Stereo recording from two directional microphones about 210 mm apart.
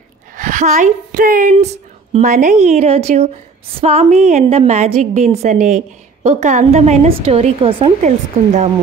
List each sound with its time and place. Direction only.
0.4 s a woman's voice: 40° right (ahead or behind)